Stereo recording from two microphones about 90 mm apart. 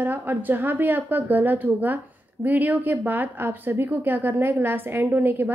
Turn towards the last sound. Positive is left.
turn(degrees=-20)  # may be behind; listen again after turning